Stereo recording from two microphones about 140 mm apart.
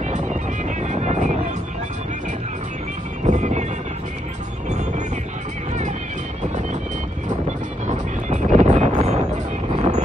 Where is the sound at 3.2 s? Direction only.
60° right (ahead or behind).